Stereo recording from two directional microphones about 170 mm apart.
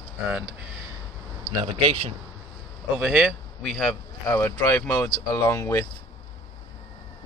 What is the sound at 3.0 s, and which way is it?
Speech, 5° right (ahead or behind).